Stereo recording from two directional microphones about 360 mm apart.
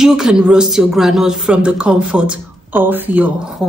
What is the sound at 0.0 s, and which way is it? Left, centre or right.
Speech, centre.